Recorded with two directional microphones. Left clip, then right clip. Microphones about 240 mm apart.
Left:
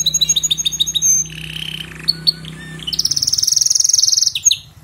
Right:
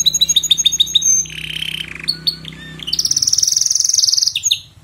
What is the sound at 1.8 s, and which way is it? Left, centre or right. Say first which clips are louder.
Bird: left 1 dB; centre.